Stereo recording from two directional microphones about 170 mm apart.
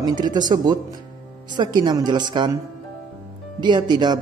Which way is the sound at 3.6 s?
25° right (ahead or behind).